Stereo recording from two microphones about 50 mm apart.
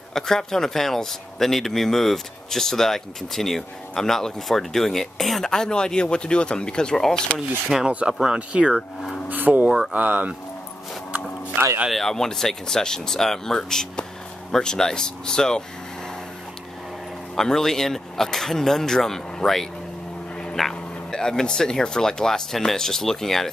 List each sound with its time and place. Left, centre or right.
0.1 s speech: centre
7.7 s speech: centre
8.4 s speech: right
9.3 s speech: right
11.6 s speech: right
11.9 s speech: centre
17.4 s speech: centre
20.6 s bow-wow: centre
21.1 s speech: centre